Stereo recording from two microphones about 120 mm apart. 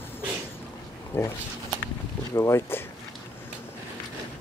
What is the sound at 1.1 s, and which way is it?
Speech, 20° left (ahead or behind).